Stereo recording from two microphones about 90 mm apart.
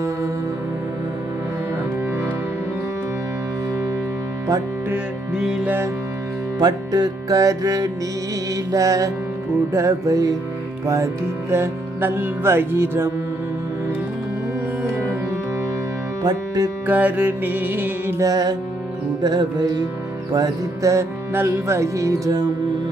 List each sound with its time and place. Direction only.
5.3 s music: 5° right (ahead or behind)
6.6 s music: 45° right (ahead or behind)
8.7 s speech: 40° right (ahead or behind)
11.5 s music: 25° right (ahead or behind)
16.2 s speech: 50° right (ahead or behind)
16.8 s music: 20° right (ahead or behind)
18.3 s music: 45° right (ahead or behind)
20.3 s speech: 40° right (ahead or behind)